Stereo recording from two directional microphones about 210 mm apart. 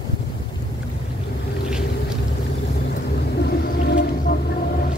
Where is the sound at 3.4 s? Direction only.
50° left (ahead or behind).